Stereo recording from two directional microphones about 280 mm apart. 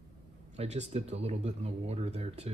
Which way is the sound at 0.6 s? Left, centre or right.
Right.